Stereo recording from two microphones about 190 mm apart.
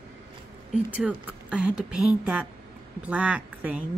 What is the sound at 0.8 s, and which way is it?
Speech, 5° right (ahead or behind).